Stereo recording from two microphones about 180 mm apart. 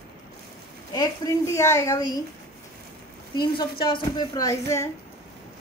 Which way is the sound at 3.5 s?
25° left (ahead or behind).